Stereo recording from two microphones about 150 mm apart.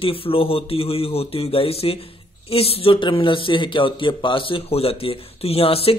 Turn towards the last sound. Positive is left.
turn(degrees=40)  # may be behind; listen again after turning